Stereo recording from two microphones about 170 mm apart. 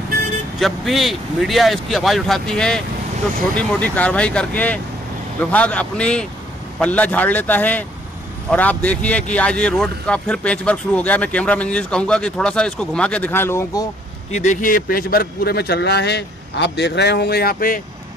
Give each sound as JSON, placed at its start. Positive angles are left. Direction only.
{"t": 0.6, "sound": "speech", "side_deg": 0}
{"t": 14.3, "sound": "a man's voice", "side_deg": 45}